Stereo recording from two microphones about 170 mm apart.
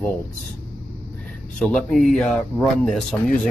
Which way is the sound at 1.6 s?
5° left (ahead or behind).